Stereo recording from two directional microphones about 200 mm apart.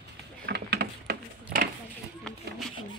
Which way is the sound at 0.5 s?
55° right (ahead or behind).